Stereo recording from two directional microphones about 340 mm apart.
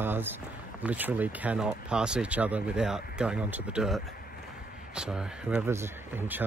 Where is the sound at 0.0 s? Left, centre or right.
Centre.